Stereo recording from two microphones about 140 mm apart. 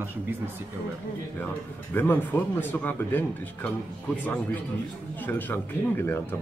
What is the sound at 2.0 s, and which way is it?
Speech, 15° left (ahead or behind).